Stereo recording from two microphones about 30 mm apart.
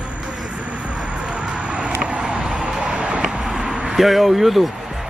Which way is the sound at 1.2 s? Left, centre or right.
Right.